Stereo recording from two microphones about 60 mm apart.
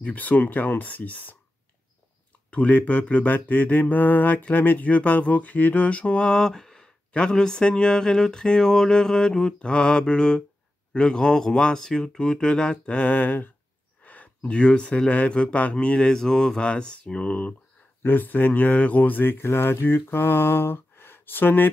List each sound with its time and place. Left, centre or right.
0.0 s mantra: left
2.5 s mantra: left; by 6.9 s centre
7.1 s speech: centre
14.0 s mantra: left
18.0 s speech: left